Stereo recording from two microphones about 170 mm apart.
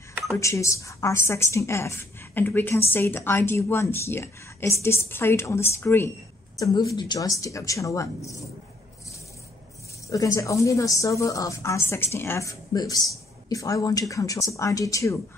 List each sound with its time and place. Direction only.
0.4 s a woman's voice: 15° left (ahead or behind)
10.0 s a woman's voice: 20° left (ahead or behind)